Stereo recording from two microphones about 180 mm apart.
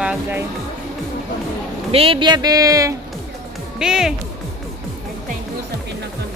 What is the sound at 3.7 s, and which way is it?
Speech, 5° right (ahead or behind).